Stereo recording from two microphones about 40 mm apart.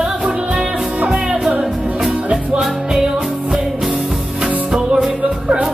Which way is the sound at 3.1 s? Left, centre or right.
Right.